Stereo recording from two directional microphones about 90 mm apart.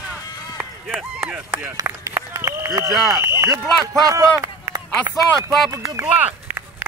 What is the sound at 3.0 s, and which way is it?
Speech, 40° right (ahead or behind).